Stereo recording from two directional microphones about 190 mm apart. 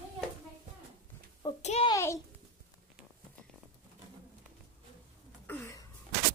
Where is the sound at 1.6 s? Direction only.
35° left (ahead or behind).